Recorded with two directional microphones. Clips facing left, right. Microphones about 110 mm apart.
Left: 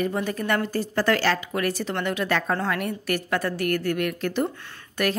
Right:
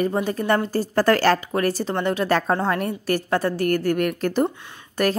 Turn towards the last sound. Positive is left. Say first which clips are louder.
# right 1 dB
turn(degrees=-15)  # may be behind; listen again after turning